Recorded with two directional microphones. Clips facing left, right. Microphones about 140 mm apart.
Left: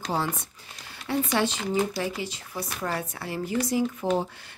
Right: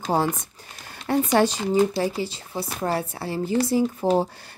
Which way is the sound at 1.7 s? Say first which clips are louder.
Right 6 dB; 25° right (ahead or behind).